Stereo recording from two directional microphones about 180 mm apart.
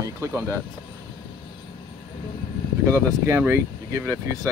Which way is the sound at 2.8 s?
15° right (ahead or behind).